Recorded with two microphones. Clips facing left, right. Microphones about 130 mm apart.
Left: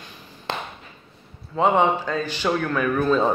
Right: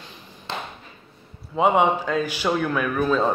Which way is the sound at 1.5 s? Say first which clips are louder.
Even; 10° right (ahead or behind).